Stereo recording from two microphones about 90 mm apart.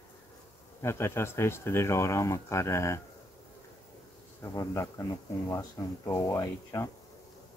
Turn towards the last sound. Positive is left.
turn(degrees=35)  # may be behind; listen again after turning